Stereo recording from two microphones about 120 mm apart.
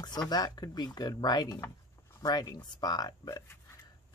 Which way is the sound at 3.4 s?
20° left (ahead or behind).